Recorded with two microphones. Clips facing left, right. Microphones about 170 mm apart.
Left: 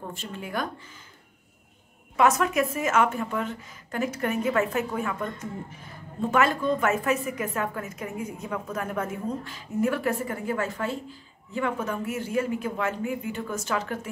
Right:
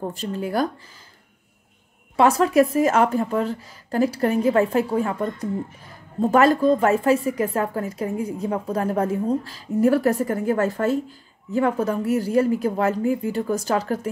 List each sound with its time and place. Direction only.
0.0 s a woman's voice: 40° right (ahead or behind)
2.1 s a woman's voice: 30° right (ahead or behind)